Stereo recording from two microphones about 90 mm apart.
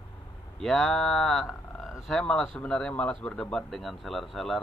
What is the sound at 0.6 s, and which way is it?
Speech, 5° left (ahead or behind).